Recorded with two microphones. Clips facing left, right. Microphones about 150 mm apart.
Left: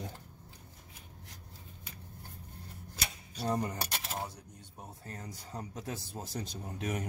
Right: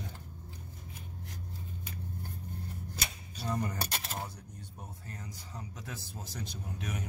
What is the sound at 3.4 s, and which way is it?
Speech, 30° left (ahead or behind).